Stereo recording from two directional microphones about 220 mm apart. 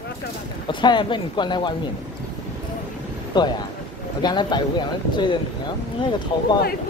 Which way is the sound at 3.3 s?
20° left (ahead or behind).